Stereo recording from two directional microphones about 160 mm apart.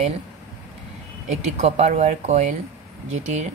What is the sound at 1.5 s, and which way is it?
Speech, 45° right (ahead or behind).